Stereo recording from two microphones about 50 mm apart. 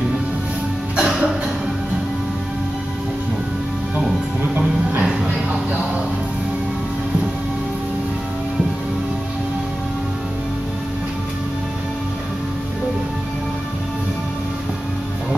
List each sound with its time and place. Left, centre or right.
0.9 s music: right
4.4 s music: right